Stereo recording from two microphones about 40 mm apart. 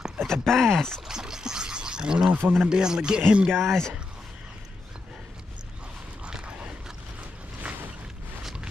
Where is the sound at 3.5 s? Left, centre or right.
Centre.